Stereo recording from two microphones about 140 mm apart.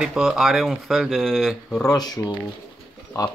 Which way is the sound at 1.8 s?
30° left (ahead or behind).